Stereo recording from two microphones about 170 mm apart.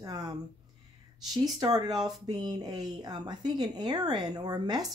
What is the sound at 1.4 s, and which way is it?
Speech, 20° right (ahead or behind).